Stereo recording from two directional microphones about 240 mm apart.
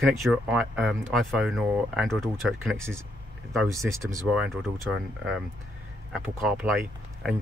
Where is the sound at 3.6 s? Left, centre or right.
Centre.